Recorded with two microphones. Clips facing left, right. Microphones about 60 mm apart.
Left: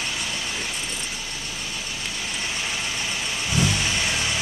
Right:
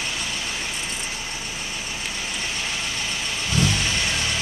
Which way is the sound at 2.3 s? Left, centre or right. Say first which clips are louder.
Left 1 dB; centre.